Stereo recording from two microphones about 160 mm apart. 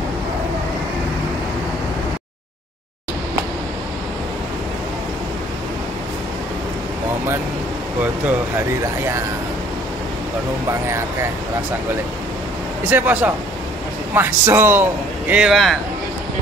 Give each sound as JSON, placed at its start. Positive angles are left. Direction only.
{"t": 10.9, "sound": "a man's voice", "side_deg": -15}
{"t": 12.9, "sound": "a man's voice", "side_deg": -10}